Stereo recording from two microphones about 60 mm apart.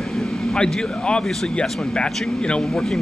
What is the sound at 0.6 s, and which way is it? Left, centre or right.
Speech, centre.